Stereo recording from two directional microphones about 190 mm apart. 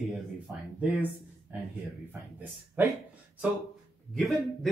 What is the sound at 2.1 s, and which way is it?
Speech, 10° right (ahead or behind).